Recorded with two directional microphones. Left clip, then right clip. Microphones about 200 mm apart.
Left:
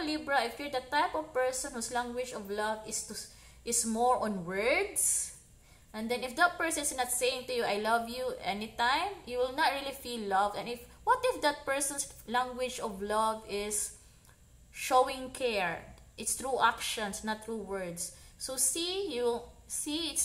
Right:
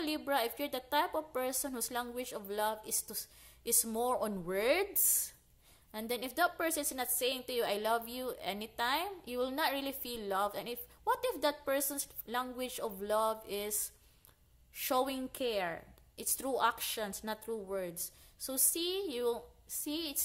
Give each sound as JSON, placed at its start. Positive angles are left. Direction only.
{"t": 0.0, "sound": "a woman's voice", "side_deg": -35}